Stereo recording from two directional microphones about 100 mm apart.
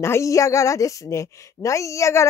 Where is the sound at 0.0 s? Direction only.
30° left (ahead or behind).